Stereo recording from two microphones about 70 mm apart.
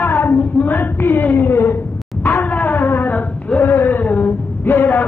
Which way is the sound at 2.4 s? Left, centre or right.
Left.